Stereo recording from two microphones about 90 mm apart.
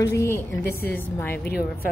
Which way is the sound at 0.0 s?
30° left (ahead or behind).